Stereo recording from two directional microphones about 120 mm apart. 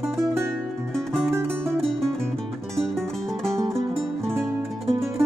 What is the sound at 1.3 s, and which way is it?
Music, 20° right (ahead or behind).